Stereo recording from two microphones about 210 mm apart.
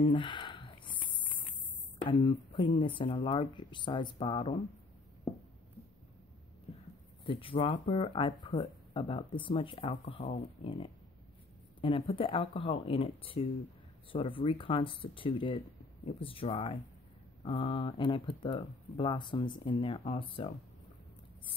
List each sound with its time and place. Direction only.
0.1 s a sound: 20° left (ahead or behind)
2.0 s speech: 25° left (ahead or behind)
7.2 s speech: 25° left (ahead or behind)